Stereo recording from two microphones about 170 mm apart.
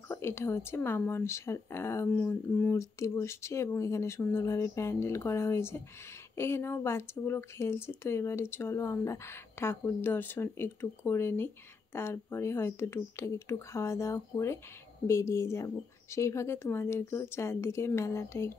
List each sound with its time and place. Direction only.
0.1 s speech: 15° left (ahead or behind)